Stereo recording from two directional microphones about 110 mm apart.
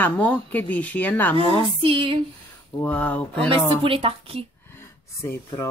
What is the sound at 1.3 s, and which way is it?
Speech, 55° right (ahead or behind).